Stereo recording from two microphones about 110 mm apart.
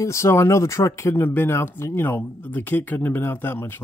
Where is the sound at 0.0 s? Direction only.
25° left (ahead or behind).